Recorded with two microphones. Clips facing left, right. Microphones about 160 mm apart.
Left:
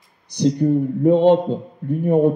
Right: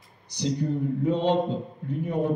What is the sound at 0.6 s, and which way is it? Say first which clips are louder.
A man's voice: left 9 dB; 55° left (ahead or behind).